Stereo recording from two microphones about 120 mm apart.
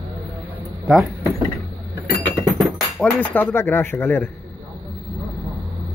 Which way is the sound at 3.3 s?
15° left (ahead or behind).